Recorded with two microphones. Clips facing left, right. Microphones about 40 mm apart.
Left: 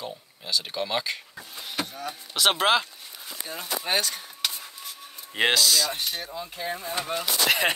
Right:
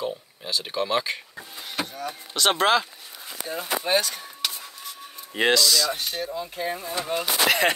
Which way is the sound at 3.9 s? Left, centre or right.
Centre.